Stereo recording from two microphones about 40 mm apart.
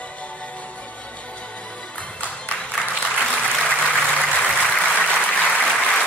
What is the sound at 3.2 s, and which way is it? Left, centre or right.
Applause, left.